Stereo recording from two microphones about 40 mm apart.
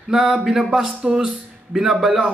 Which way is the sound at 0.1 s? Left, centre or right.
Centre.